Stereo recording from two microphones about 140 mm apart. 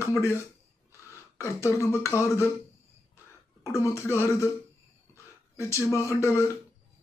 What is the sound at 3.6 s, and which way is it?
Speech, 20° left (ahead or behind).